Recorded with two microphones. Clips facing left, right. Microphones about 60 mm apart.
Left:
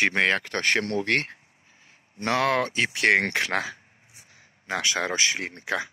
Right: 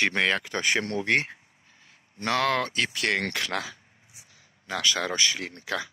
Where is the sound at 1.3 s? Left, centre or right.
Centre.